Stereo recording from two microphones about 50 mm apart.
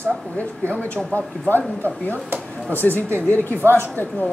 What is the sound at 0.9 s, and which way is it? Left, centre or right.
Speech, left.